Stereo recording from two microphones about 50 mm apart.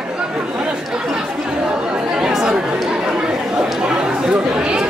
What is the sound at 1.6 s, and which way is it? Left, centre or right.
Chatter, centre.